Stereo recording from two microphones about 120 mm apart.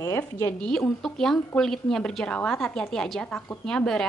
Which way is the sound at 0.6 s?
5° left (ahead or behind).